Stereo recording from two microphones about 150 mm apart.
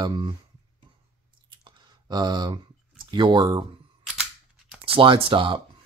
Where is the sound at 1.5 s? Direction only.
30° right (ahead or behind).